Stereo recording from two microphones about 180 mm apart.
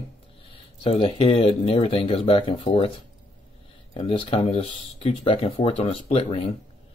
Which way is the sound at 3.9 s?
35° left (ahead or behind).